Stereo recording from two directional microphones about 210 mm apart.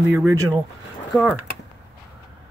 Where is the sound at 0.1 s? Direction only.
15° right (ahead or behind).